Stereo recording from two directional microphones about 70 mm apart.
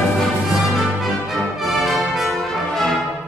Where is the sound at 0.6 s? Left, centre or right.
Centre.